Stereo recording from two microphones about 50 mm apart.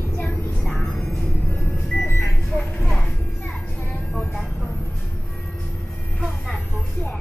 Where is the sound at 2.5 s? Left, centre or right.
Centre.